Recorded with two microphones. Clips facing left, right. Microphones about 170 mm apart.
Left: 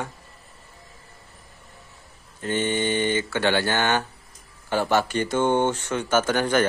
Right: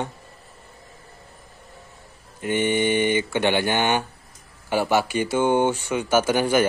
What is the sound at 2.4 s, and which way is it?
Speech, 15° right (ahead or behind).